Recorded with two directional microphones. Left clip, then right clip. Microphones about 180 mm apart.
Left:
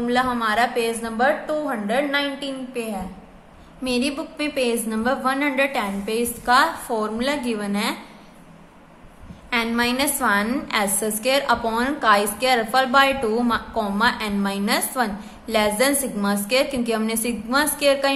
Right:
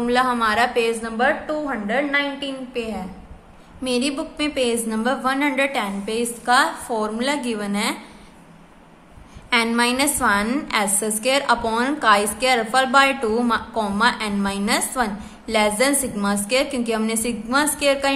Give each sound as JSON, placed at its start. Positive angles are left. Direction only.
{"t": 0.0, "sound": "a woman's voice", "side_deg": -10}
{"t": 9.5, "sound": "a woman's voice", "side_deg": -10}